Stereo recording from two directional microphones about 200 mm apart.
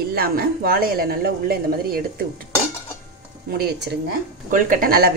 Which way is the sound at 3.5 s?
50° right (ahead or behind).